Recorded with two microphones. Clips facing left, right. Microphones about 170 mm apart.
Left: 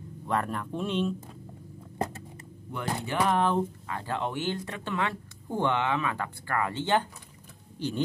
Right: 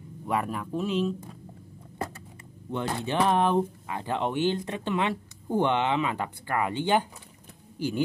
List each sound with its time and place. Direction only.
0.3 s speech: 5° right (ahead or behind)
2.7 s speech: 20° right (ahead or behind)